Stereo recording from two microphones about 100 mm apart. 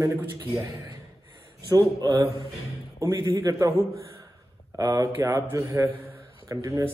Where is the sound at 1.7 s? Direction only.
40° right (ahead or behind).